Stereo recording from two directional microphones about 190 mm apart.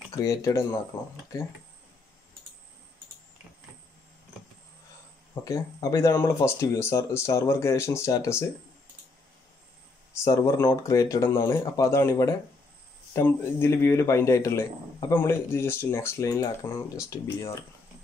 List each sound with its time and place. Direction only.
0.1 s a man's voice: 15° left (ahead or behind)
5.3 s a man's voice: 20° left (ahead or behind)
10.2 s a man's voice: 15° left (ahead or behind)